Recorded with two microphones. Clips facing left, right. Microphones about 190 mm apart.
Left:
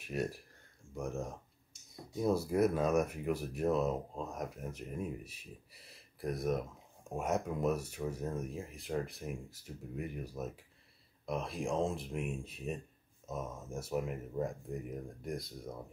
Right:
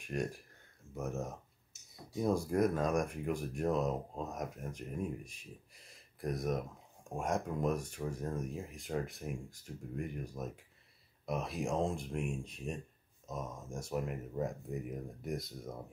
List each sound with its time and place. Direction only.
0.0 s speech: 5° left (ahead or behind)